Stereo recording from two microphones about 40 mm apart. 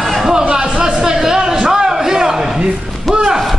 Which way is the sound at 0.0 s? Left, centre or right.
Centre.